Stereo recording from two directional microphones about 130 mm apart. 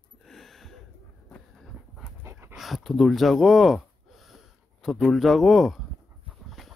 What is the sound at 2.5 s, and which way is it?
Speech, centre (ahead or behind).